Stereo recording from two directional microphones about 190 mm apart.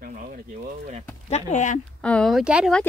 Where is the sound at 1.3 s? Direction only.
40° left (ahead or behind).